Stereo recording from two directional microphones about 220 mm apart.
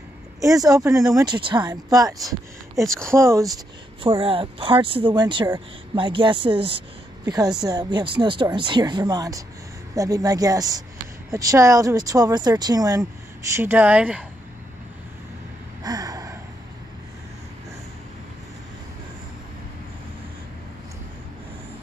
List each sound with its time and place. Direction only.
0.4 s speech: 15° right (ahead or behind)
2.8 s speech: centre (ahead or behind)
3.1 s speech: 15° right (ahead or behind)
4.0 s speech: 25° right (ahead or behind); by 14.2 s 5° right (ahead or behind)
15.8 s gasp: 15° right (ahead or behind)